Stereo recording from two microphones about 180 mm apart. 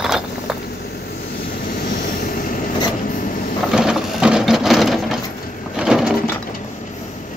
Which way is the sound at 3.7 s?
5° right (ahead or behind).